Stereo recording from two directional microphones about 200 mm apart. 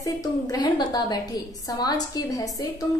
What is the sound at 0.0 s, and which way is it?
A woman's voice, 15° left (ahead or behind).